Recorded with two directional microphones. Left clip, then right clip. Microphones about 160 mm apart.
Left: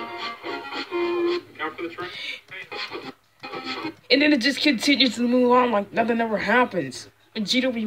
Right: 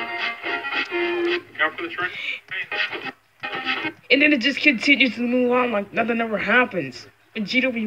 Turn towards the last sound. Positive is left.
turn(degrees=5)  # may be behind; listen again after turning